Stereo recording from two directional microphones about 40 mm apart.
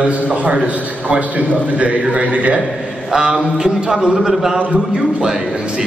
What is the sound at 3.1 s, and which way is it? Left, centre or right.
A man's voice, centre.